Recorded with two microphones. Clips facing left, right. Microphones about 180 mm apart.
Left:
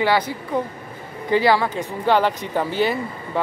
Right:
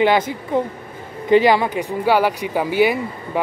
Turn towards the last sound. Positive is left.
turn(degrees=-10)  # may be behind; listen again after turning